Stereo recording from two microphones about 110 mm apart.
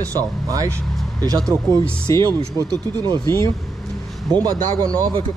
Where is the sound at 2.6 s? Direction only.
35° right (ahead or behind).